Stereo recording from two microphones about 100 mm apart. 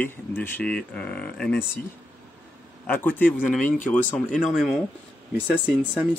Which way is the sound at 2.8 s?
15° left (ahead or behind).